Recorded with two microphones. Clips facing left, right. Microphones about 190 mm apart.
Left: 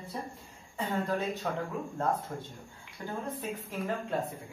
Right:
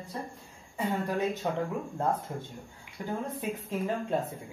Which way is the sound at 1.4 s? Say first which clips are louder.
Right 3 dB; 20° right (ahead or behind).